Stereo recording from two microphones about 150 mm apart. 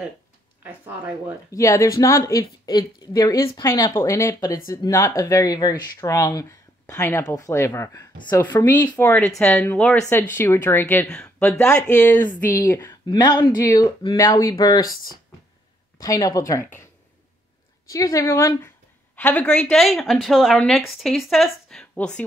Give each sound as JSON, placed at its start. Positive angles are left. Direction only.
{"t": 0.6, "sound": "a sound", "side_deg": -10}
{"t": 1.5, "sound": "speech", "side_deg": 20}
{"t": 8.9, "sound": "speech", "side_deg": 10}
{"t": 12.3, "sound": "speech", "side_deg": 65}
{"t": 12.6, "sound": "speech", "side_deg": 25}
{"t": 16.0, "sound": "speech", "side_deg": 25}
{"t": 17.9, "sound": "a woman's voice", "side_deg": 20}